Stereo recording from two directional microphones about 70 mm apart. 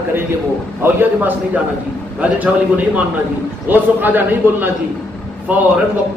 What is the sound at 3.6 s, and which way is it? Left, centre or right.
A man's voice, right.